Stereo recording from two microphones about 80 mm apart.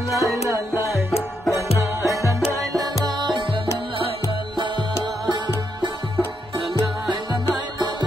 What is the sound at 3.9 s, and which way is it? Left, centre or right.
Music, right.